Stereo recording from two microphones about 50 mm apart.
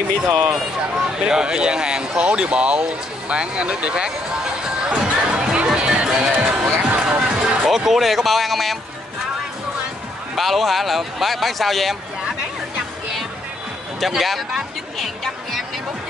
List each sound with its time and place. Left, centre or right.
0.5 s speech: centre
7.1 s music: centre
10.3 s speech: centre
13.9 s speech: centre